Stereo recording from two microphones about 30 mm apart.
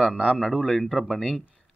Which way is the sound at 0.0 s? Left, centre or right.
Right.